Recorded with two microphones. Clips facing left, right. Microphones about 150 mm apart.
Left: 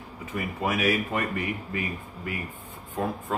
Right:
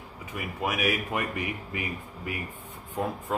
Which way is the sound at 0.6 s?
10° right (ahead or behind).